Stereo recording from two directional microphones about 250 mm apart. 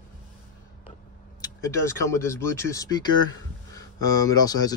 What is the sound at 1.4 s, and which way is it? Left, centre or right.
Speech, centre.